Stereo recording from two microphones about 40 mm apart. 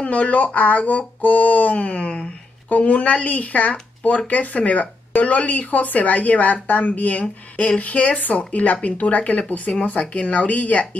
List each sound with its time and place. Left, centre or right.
0.0 s speech: left